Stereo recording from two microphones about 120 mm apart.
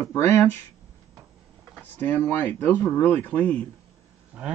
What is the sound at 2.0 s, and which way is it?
Speech, 15° left (ahead or behind).